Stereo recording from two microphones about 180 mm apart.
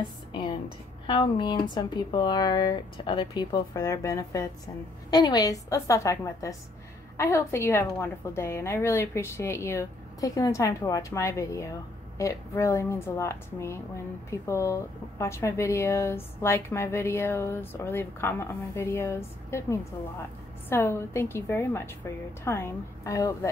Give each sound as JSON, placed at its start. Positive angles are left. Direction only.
{"t": 1.0, "sound": "a woman's voice", "side_deg": 30}